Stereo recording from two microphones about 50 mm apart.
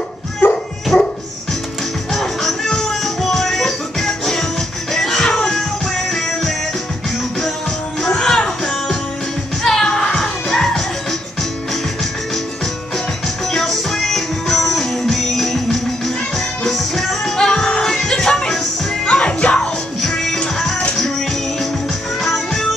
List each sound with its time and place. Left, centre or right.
0.4 s dog: left
0.9 s dog: centre
2.1 s music: centre
8.1 s music: centre
13.5 s music: centre
19.0 s music: left
22.2 s music: centre